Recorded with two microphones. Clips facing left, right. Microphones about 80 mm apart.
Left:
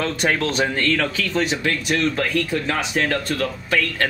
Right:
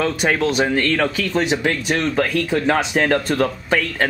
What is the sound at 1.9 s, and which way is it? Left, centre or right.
Speech, right.